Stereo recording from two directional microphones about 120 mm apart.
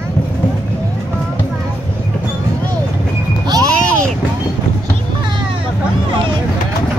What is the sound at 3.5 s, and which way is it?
Music, 30° right (ahead or behind).